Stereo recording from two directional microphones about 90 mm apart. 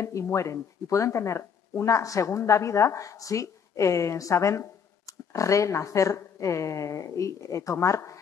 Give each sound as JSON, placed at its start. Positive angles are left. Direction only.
{"t": 0.0, "sound": "speech", "side_deg": 35}